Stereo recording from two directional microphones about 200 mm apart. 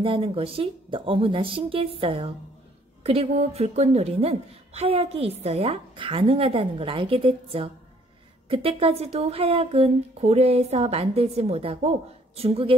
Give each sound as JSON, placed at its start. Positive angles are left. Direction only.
{"t": 0.0, "sound": "a woman's voice", "side_deg": -25}